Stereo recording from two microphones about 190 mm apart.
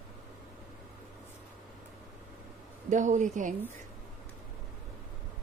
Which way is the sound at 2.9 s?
40° right (ahead or behind).